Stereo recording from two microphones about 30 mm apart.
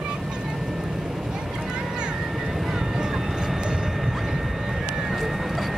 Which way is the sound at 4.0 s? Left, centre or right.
Centre.